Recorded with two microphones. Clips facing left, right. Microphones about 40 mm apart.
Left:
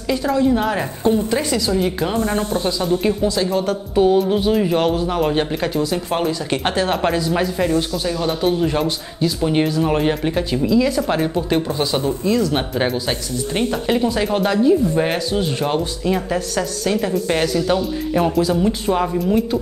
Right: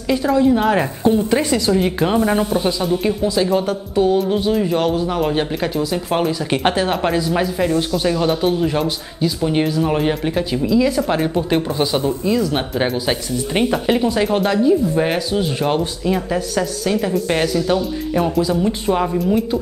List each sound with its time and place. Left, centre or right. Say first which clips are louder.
0.1 s speech: right 2 dB; centre
1.3 s a woman's voice: right 3 dB; centre
3.0 s a woman's voice: right 1 dB; centre
3.9 s speech: left 1 dB; centre
8.0 s speech: right 4 dB; centre
8.3 s speech: right 1 dB; centre